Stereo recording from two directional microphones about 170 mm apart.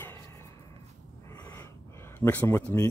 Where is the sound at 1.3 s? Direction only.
20° left (ahead or behind).